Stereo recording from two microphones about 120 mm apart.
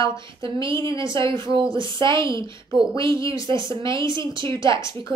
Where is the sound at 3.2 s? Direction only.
25° left (ahead or behind).